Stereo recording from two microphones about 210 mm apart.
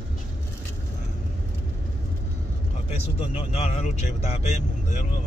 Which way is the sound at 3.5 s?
30° left (ahead or behind).